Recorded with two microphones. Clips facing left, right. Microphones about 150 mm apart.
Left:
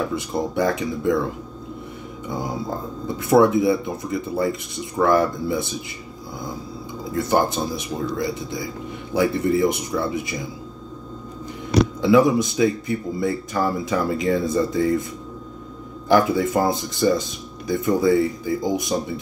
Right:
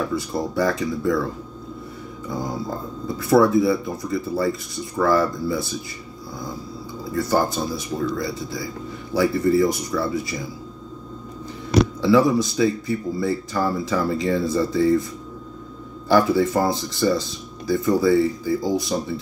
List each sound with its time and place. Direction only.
0.1 s speech: 20° left (ahead or behind)
2.2 s speech: 20° left (ahead or behind)
7.2 s speech: 20° left (ahead or behind)
12.0 s speech: 20° left (ahead or behind)
16.1 s speech: 20° left (ahead or behind)